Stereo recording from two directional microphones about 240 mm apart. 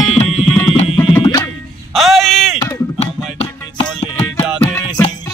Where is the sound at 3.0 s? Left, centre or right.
Left.